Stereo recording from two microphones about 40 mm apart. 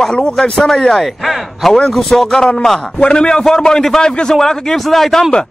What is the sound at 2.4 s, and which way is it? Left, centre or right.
Speech, centre.